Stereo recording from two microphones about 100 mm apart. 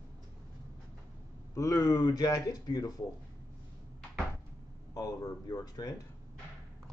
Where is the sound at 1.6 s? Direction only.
35° left (ahead or behind).